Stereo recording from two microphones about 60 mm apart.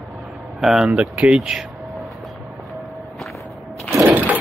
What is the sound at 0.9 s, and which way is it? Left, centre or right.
Speech, centre.